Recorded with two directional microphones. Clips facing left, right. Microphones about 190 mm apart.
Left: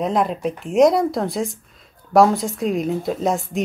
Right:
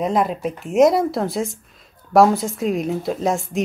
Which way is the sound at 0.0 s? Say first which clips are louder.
Even; centre (ahead or behind).